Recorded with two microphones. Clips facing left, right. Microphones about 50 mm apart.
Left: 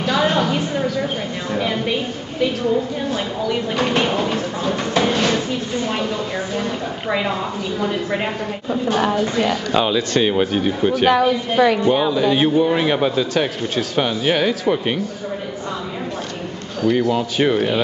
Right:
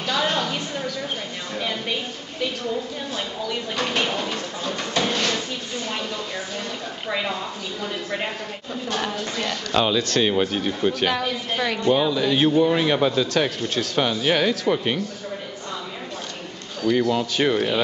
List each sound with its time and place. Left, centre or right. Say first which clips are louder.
0.0 s a sound: left 6 dB; centre
2.4 s speech: left 8 dB; centre
7.1 s speech: left 5 dB; centre
16.8 s speech: left 3 dB; centre